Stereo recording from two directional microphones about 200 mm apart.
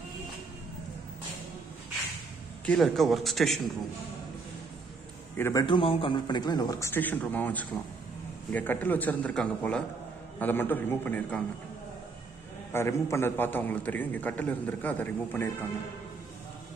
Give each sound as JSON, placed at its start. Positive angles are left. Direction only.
{"t": 2.6, "sound": "a man's voice", "side_deg": 5}
{"t": 5.4, "sound": "a man's voice", "side_deg": 15}
{"t": 12.7, "sound": "a man's voice", "side_deg": 10}